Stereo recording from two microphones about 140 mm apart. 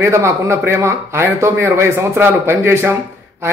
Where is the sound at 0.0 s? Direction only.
20° right (ahead or behind).